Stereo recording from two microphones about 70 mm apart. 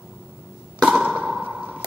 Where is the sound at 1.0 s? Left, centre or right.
Centre.